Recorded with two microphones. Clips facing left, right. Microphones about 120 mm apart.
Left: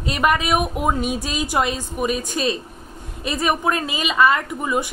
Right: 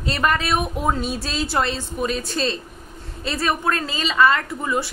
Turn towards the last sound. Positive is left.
turn(degrees=15)  # may be behind; listen again after turning